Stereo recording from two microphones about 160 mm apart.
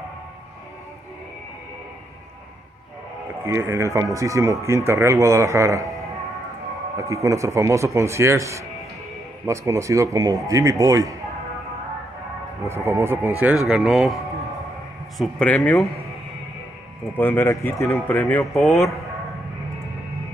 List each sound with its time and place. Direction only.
3.4 s speech: 15° right (ahead or behind)
7.0 s speech: 20° right (ahead or behind)
12.6 s speech: 15° right (ahead or behind); by 15.9 s 10° left (ahead or behind)
17.2 s speech: 15° left (ahead or behind)
18.4 s speech: centre (ahead or behind)